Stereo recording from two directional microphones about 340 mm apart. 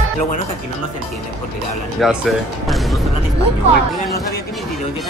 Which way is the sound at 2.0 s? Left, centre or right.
Centre.